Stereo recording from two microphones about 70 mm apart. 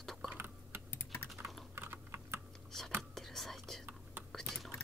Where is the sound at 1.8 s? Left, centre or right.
Right.